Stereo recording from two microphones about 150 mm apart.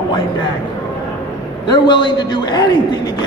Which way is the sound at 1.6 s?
30° left (ahead or behind).